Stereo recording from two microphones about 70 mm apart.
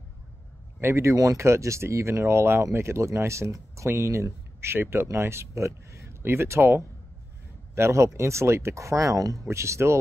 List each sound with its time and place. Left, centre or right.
0.7 s speech: right